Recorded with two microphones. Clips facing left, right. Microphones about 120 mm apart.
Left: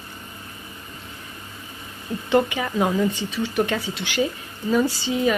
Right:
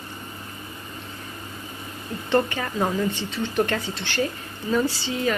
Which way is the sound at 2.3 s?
10° left (ahead or behind).